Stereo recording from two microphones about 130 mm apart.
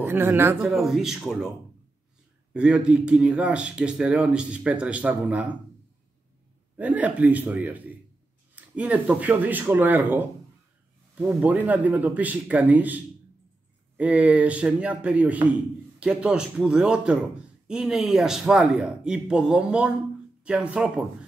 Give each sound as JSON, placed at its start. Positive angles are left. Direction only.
{"t": 0.0, "sound": "speech", "side_deg": -15}
{"t": 0.6, "sound": "a man's voice", "side_deg": 0}
{"t": 2.5, "sound": "speech", "side_deg": -10}
{"t": 6.8, "sound": "a man's voice", "side_deg": -10}